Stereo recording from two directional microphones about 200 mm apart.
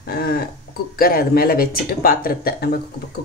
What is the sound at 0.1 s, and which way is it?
Speech, 50° left (ahead or behind).